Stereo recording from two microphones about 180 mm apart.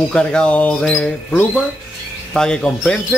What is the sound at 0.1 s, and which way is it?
A man's voice, 5° left (ahead or behind).